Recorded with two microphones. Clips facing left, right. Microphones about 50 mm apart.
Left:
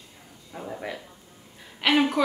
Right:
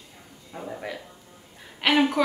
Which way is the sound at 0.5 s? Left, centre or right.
Centre.